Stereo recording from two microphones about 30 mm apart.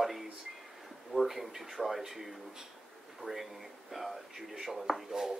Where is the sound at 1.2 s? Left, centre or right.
Centre.